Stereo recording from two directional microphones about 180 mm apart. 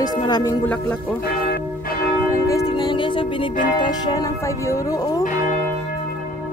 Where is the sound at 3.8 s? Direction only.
25° left (ahead or behind).